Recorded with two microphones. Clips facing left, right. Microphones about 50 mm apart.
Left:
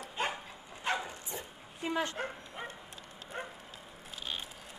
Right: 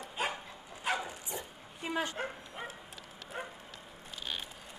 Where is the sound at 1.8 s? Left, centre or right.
Centre.